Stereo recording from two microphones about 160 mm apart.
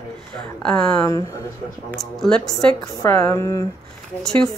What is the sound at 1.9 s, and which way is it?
Speech, centre (ahead or behind).